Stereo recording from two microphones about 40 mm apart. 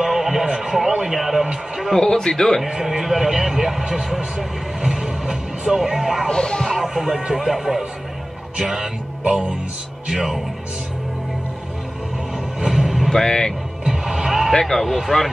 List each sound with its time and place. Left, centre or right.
0.0 s music: centre
2.0 s speech: centre
2.7 s speech: centre
6.2 s speech: centre
6.8 s speech: centre
10.1 s speech: centre
12.5 s vehicle: centre
13.1 s speech: centre
13.8 s music: centre
14.5 s speech: centre